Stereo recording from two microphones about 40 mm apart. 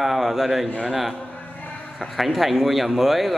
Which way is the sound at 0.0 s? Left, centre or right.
Centre.